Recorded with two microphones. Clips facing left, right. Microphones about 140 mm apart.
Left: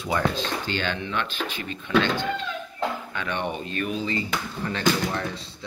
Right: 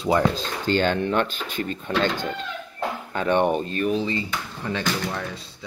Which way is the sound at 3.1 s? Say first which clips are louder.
Right 9 dB; 45° right (ahead or behind).